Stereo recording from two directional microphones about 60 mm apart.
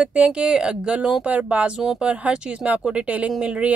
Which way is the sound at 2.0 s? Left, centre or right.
Right.